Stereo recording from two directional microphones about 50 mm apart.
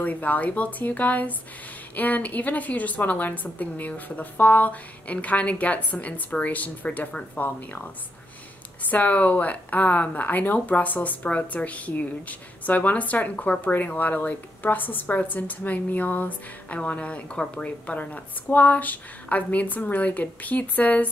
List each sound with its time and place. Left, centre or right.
0.0 s a woman's voice: left
7.4 s a woman's voice: left; by 17.6 s centre
17.6 s a woman's voice: left